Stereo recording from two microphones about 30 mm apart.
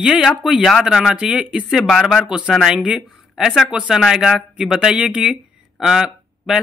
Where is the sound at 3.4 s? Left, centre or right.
Centre.